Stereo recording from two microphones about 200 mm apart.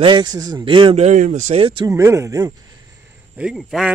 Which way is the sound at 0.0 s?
20° right (ahead or behind).